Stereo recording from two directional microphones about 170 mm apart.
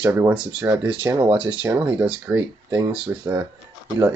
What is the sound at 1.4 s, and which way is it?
Speech, 30° right (ahead or behind).